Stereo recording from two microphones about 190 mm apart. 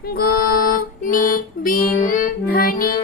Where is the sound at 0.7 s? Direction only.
45° left (ahead or behind).